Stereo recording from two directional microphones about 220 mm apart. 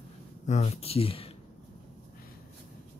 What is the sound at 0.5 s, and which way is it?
Speech, 30° left (ahead or behind).